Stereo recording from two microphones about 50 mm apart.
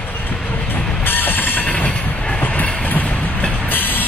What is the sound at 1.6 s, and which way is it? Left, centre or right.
Train, left.